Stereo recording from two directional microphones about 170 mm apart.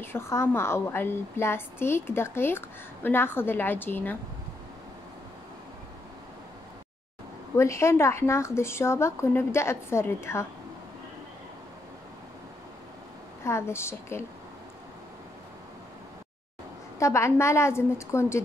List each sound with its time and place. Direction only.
0.0 s a woman's voice: 15° left (ahead or behind)
7.5 s a woman's voice: 15° left (ahead or behind)
13.4 s a woman's voice: 15° left (ahead or behind)
17.0 s a woman's voice: 15° left (ahead or behind)